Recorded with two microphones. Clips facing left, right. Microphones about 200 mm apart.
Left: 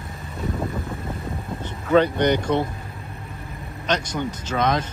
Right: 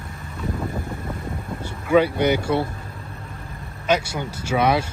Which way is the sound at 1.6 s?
10° right (ahead or behind).